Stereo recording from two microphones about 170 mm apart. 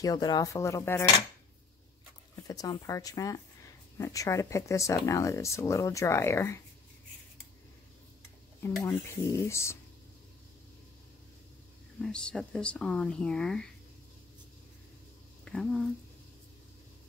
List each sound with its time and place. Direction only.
0.0 s speech: 25° left (ahead or behind)
2.4 s speech: 20° left (ahead or behind)
8.8 s speech: 15° left (ahead or behind)
12.0 s speech: 5° left (ahead or behind)
15.4 s speech: 5° left (ahead or behind)